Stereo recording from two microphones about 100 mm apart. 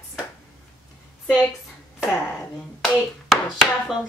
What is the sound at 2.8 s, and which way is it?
Hands, 5° right (ahead or behind).